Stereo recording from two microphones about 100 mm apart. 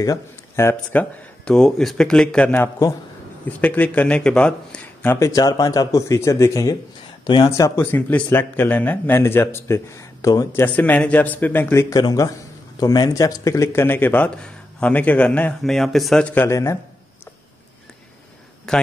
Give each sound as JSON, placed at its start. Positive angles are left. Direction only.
{"t": 0.0, "sound": "speech", "side_deg": 35}
{"t": 0.9, "sound": "speech", "side_deg": 15}
{"t": 1.4, "sound": "speech", "side_deg": 5}
{"t": 5.0, "sound": "speech", "side_deg": 20}
{"t": 5.3, "sound": "speech", "side_deg": 40}
{"t": 7.8, "sound": "speech", "side_deg": 20}
{"t": 10.6, "sound": "speech", "side_deg": 15}
{"t": 11.7, "sound": "speech", "side_deg": 30}
{"t": 15.6, "sound": "speech", "side_deg": 5}
{"t": 16.4, "sound": "speech", "side_deg": 30}
{"t": 18.7, "sound": "a man's voice", "side_deg": 5}